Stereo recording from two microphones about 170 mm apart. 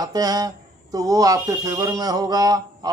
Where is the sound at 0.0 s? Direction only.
20° right (ahead or behind).